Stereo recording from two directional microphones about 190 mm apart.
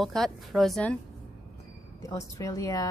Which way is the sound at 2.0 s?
15° left (ahead or behind).